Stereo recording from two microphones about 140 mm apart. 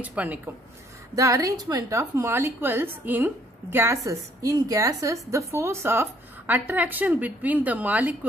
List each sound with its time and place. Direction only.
0.0 s a woman's voice: 10° right (ahead or behind)
1.1 s a woman's voice: 25° right (ahead or behind)